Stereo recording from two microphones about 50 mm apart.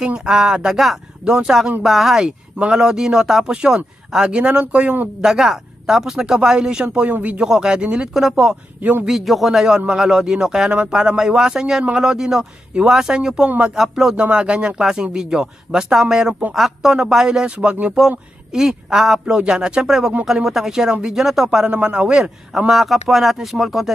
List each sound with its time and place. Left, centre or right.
0.0 s a man's voice: centre
5.2 s a man's voice: centre
8.1 s a man's voice: centre
10.7 s a man's voice: right
11.0 s a man's voice: centre
13.5 s a man's voice: right
13.7 s speech: centre
14.3 s a man's voice: right
21.6 s a man's voice: right
22.1 s speech: centre